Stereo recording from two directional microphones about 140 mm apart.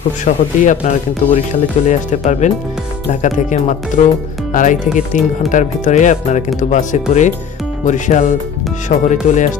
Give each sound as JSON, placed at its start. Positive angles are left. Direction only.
{"t": 0.2, "sound": "speech", "side_deg": 65}